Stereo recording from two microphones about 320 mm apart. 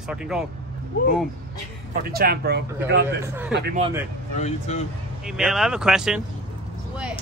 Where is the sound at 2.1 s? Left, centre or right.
Right.